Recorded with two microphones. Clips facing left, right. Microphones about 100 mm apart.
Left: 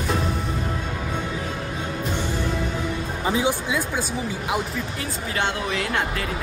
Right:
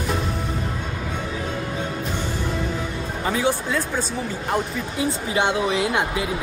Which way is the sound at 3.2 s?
15° left (ahead or behind).